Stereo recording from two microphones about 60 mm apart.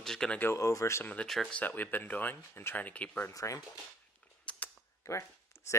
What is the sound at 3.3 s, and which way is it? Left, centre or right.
Speech, left.